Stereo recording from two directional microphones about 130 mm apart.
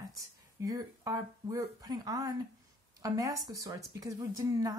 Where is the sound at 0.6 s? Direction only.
25° right (ahead or behind).